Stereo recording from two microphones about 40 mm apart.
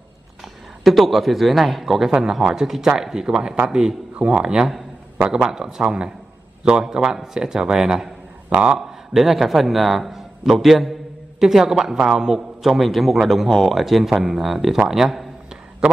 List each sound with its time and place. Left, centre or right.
0.8 s speech: centre
4.2 s a man's voice: right
12.6 s speech: centre